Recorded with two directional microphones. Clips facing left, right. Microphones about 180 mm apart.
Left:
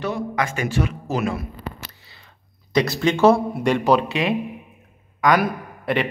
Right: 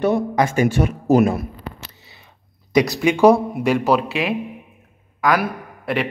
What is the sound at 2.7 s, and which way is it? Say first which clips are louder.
A man's voice: right 3 dB; 15° right (ahead or behind).